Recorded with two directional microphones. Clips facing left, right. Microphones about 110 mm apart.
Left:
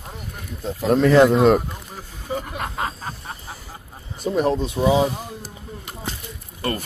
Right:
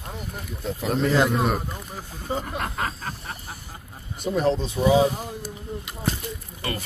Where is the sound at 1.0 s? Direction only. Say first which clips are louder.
Left 8 dB; 65° left (ahead or behind).